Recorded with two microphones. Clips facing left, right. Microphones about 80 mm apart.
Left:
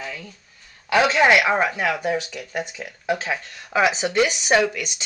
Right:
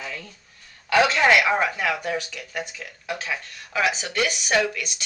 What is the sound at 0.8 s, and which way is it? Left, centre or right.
Speech, centre.